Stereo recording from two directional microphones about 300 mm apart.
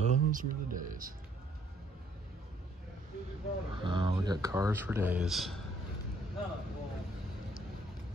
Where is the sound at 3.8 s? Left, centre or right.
Centre.